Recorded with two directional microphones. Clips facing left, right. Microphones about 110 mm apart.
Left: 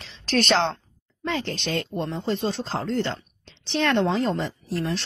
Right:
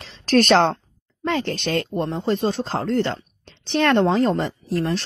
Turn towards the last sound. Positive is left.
turn(degrees=-45)  # may be behind; listen again after turning